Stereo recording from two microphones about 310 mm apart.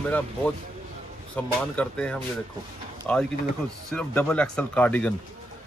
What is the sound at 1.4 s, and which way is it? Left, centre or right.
Speech, centre.